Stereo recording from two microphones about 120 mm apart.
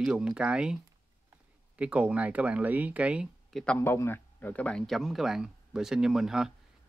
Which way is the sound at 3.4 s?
Centre (ahead or behind).